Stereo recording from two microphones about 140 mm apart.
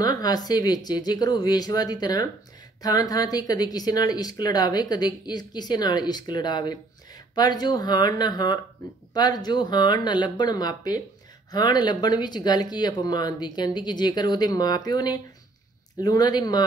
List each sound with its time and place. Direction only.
0.0 s speech: 30° left (ahead or behind)